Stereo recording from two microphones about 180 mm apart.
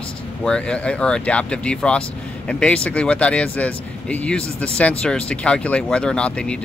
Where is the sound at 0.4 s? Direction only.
5° left (ahead or behind).